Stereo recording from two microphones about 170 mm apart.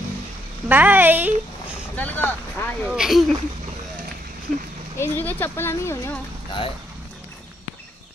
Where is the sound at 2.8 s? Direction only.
5° right (ahead or behind).